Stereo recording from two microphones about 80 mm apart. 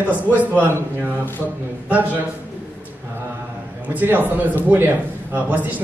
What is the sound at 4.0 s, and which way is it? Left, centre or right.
Speech, right.